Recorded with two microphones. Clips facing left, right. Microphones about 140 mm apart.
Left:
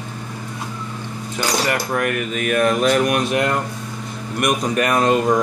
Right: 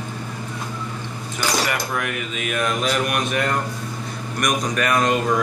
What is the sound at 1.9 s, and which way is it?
Speech, 50° left (ahead or behind).